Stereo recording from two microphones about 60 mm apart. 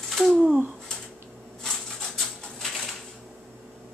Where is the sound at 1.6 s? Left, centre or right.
Centre.